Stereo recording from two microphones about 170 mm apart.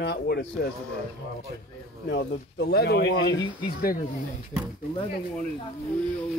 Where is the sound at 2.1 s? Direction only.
85° left.